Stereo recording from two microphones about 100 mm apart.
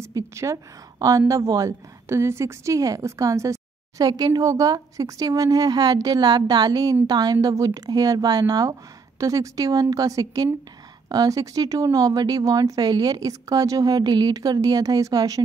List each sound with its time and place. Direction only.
0.0 s speech: 30° right (ahead or behind)